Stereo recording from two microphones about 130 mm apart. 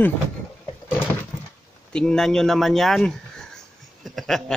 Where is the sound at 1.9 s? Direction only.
5° left (ahead or behind).